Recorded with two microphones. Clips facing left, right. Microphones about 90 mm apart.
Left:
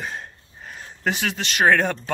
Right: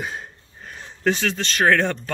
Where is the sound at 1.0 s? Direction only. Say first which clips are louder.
Right 3 dB; 10° left (ahead or behind).